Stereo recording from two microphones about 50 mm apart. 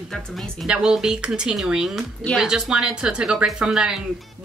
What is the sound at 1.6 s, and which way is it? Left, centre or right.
Speech, centre.